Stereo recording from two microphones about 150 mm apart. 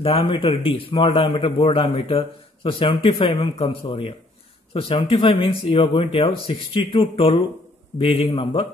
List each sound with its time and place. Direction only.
0.0 s a man's voice: 35° left (ahead or behind)